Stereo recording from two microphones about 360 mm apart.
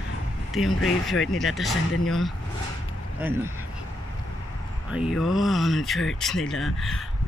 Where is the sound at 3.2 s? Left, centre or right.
Centre.